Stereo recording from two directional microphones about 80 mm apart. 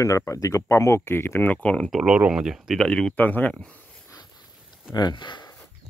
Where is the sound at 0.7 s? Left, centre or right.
Left.